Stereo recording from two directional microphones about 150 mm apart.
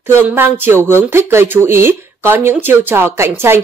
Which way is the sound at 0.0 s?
15° right (ahead or behind).